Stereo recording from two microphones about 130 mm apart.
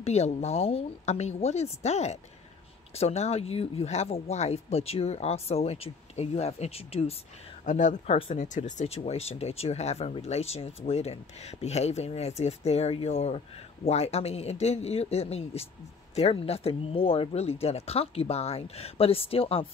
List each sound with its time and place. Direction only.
0.0 s speech: 55° left (ahead or behind)
7.6 s speech: 70° left (ahead or behind); by 19.7 s 45° left (ahead or behind)